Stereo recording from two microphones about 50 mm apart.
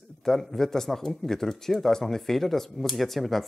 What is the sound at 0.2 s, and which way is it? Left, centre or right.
Speech, centre.